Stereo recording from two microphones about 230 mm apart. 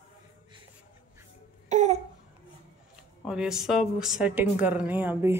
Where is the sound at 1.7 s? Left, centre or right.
Right.